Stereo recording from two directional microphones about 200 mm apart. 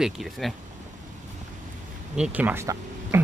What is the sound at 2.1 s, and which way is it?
Speech, 5° right (ahead or behind).